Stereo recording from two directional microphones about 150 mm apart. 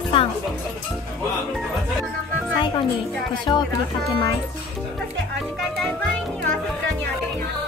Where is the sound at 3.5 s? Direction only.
30° left (ahead or behind).